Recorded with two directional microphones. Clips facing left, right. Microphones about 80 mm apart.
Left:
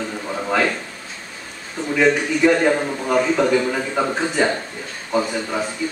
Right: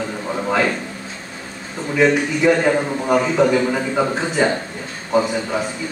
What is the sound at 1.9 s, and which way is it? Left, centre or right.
A man's voice, centre.